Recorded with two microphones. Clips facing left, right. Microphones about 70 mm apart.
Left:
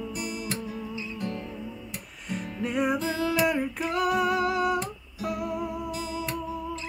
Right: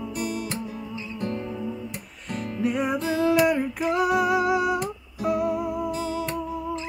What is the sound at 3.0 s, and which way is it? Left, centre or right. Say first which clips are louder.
Music: right 4 dB; right.